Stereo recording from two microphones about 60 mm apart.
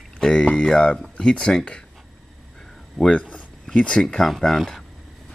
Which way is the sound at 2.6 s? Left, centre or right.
Centre.